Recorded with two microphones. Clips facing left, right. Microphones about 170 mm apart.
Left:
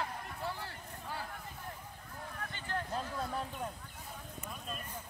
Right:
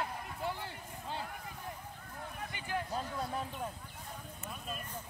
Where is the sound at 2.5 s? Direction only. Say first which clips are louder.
Right 1 dB; 10° right (ahead or behind).